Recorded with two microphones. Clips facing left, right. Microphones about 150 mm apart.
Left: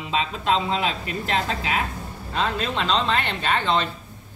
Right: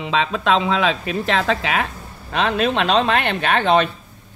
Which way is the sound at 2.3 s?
75° right (ahead or behind).